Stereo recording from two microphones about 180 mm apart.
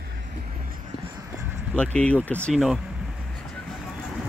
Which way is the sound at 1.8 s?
5° left (ahead or behind).